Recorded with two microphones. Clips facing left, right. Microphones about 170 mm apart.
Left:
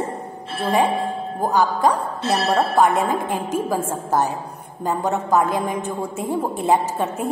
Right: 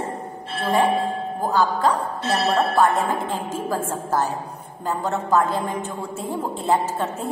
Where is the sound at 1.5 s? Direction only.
15° left (ahead or behind).